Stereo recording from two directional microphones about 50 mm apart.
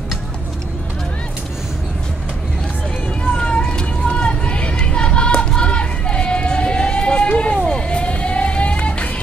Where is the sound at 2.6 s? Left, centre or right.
Centre.